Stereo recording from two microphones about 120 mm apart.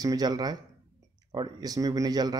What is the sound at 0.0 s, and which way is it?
Speech, 30° right (ahead or behind).